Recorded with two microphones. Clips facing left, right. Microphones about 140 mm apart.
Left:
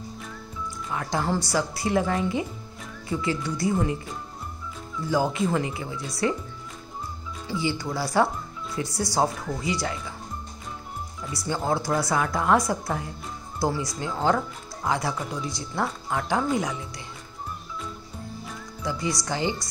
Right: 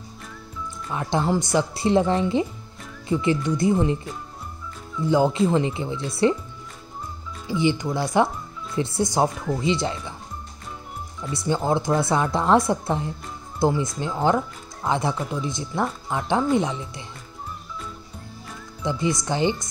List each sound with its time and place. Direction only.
0.9 s a woman's voice: 20° right (ahead or behind)
5.0 s a woman's voice: 20° right (ahead or behind)
7.4 s a woman's voice: 20° right (ahead or behind)
11.3 s a woman's voice: 20° right (ahead or behind)
18.8 s a woman's voice: 25° right (ahead or behind)